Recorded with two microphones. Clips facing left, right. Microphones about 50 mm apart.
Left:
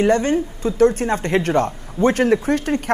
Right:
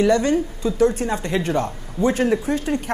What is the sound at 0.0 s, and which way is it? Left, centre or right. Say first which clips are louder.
A woman's voice: left 1 dB; left.